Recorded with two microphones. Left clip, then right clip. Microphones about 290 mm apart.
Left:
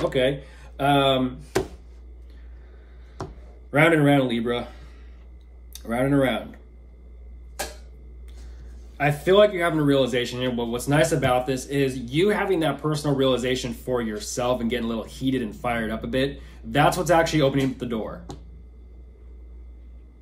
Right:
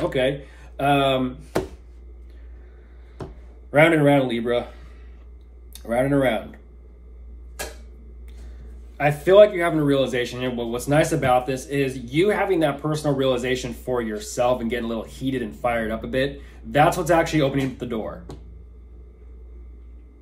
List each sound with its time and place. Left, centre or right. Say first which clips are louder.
0.1 s speech: even; centre
3.7 s speech: right 2 dB; centre
9.2 s speech: right 4 dB; centre